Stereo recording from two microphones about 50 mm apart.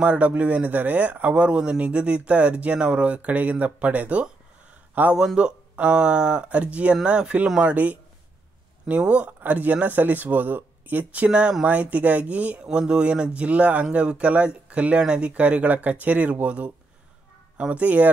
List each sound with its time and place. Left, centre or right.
0.0 s speech: right
5.1 s speech: centre
7.7 s speech: right
12.6 s speech: centre